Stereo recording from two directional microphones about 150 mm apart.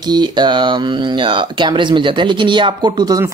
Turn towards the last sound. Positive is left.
turn(degrees=-25)  # may be behind; listen again after turning